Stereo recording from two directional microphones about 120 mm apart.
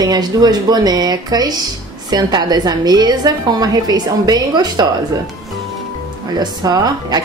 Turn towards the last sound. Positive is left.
turn(degrees=-35)  # may be behind; listen again after turning